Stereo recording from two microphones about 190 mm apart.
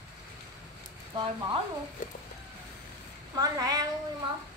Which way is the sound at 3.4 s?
20° right (ahead or behind).